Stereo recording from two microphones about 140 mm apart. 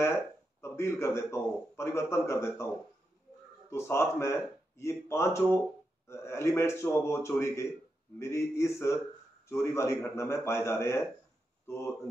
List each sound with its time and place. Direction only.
0.0 s a man's voice: 20° left (ahead or behind)
3.7 s speech: 20° left (ahead or behind)